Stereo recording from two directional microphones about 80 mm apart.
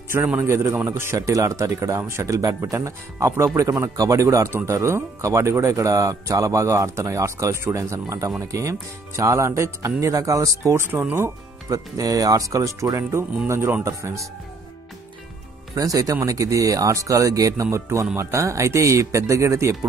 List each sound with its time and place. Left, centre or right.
0.4 s a man's voice: right
11.7 s a man's voice: right
15.7 s a man's voice: right